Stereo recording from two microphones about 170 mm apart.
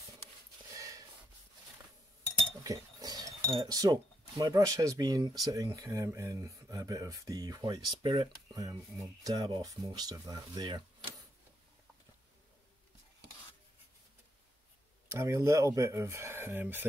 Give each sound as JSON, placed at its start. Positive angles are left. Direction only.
{"t": 0.7, "sound": "a sound", "side_deg": -20}
{"t": 2.6, "sound": "speech", "side_deg": -20}
{"t": 15.0, "sound": "speech", "side_deg": -15}